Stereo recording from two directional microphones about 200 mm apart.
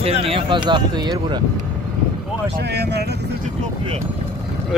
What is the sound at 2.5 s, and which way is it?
Speech, 55° right (ahead or behind).